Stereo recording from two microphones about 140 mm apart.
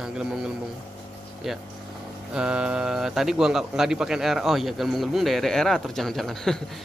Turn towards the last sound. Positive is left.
turn(degrees=5)  # may be behind; listen again after turning